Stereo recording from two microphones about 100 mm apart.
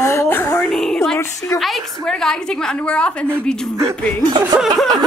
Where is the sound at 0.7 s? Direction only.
5° left (ahead or behind).